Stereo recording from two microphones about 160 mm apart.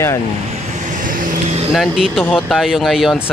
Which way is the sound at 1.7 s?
Centre (ahead or behind).